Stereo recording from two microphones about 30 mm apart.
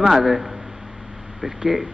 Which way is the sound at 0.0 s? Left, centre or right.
Centre.